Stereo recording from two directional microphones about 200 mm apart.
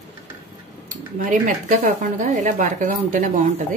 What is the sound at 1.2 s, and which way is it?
Speech, 40° right (ahead or behind).